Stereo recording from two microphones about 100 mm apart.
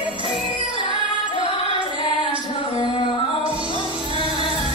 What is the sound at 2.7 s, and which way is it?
Music, 55° left (ahead or behind).